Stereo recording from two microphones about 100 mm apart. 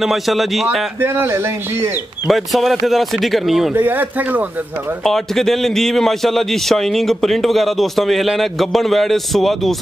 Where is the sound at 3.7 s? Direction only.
20° right (ahead or behind).